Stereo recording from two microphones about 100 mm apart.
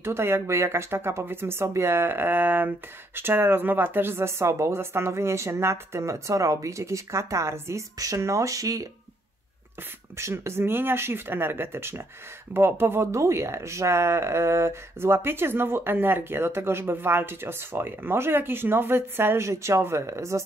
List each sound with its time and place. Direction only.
0.0 s speech: 25° right (ahead or behind)
10.1 s speech: 25° right (ahead or behind)